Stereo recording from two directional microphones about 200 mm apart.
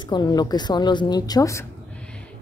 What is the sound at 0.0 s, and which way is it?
A woman's voice, 20° left (ahead or behind).